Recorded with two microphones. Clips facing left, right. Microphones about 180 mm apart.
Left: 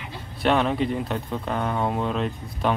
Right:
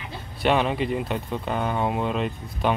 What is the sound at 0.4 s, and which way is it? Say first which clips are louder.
Speech: left 1 dB; centre (ahead or behind).